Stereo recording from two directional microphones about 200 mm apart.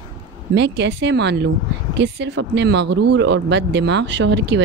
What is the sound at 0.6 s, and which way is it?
Speech, 60° right (ahead or behind).